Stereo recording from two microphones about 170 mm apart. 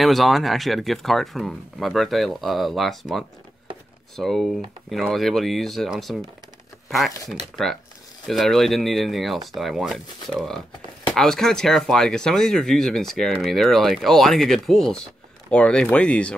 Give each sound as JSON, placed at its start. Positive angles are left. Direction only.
{"t": 0.0, "sound": "speech", "side_deg": 0}